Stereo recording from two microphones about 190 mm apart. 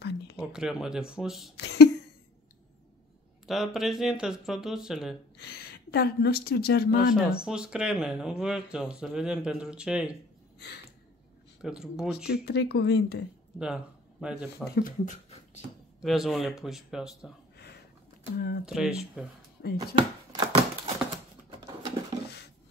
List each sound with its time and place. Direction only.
0.4 s speech: 5° right (ahead or behind)
1.6 s a sound: 60° left (ahead or behind)
3.4 s speech: centre (ahead or behind)
5.4 s speech: 55° left (ahead or behind)
7.2 s speech: 5° right (ahead or behind)
11.6 s speech: 5° right (ahead or behind)
12.3 s speech: 60° left (ahead or behind)
14.2 s speech: 5° right (ahead or behind)
14.8 s speech: 45° left (ahead or behind)
16.0 s speech: centre (ahead or behind)
18.7 s speech: 5° right (ahead or behind)
19.6 s speech: 55° left (ahead or behind)
20.0 s a sound: 20° right (ahead or behind)